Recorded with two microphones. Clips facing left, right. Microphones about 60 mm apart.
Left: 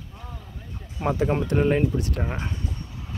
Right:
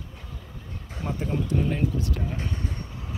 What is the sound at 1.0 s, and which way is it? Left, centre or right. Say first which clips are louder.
Speech: left 6 dB; left.